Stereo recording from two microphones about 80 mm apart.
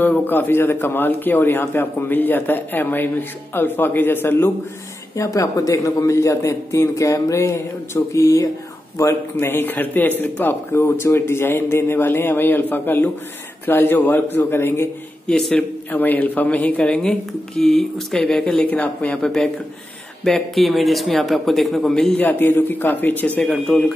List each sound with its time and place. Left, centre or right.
0.0 s a man's voice: left
5.1 s a man's voice: left
15.2 s speech: centre
15.9 s speech: left; by 18.6 s centre
18.6 s speech: centre
22.2 s a man's voice: left
23.4 s speech: centre